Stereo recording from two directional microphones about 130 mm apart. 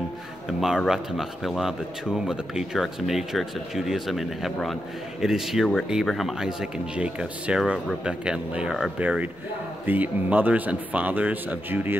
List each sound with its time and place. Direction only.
0.5 s speech: centre (ahead or behind)